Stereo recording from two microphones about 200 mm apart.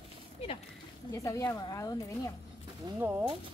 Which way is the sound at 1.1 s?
15° left (ahead or behind).